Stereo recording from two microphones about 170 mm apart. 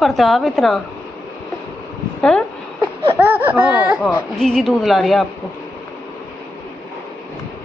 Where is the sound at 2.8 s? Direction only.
10° right (ahead or behind).